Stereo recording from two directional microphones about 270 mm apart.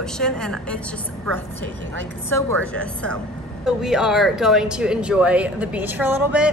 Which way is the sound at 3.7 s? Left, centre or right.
Centre.